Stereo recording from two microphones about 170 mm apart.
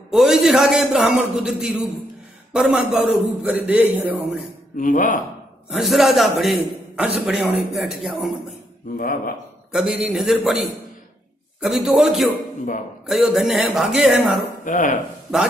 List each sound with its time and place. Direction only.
0.1 s a man's voice: centre (ahead or behind)
4.7 s speech: 50° left (ahead or behind)
5.7 s a man's voice: centre (ahead or behind)
8.9 s speech: 55° left (ahead or behind)
9.7 s a man's voice: 5° right (ahead or behind)
14.6 s dishes: 50° left (ahead or behind)